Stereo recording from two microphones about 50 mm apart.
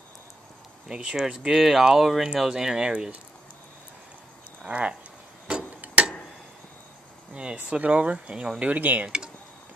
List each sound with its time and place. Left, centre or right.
0.8 s speech: centre
2.2 s speech: centre
4.6 s speech: right
7.7 s speech: right